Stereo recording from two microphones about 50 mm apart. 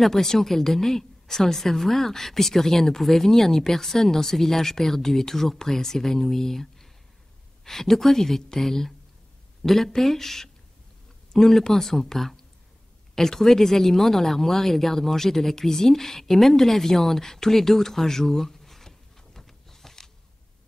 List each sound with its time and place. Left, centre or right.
0.0 s a woman's voice: centre